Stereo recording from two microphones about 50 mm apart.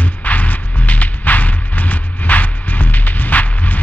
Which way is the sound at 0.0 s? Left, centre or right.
Left.